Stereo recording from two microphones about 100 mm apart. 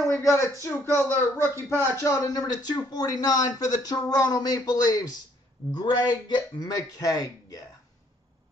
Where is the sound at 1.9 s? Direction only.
35° left (ahead or behind).